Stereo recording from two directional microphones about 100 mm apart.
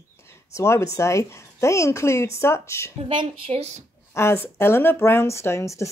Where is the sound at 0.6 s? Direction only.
30° left (ahead or behind).